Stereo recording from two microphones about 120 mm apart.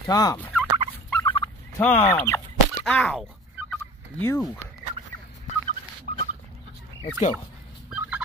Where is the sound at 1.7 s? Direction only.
10° left (ahead or behind).